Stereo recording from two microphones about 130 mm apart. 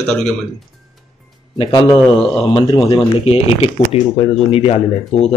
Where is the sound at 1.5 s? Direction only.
40° left (ahead or behind).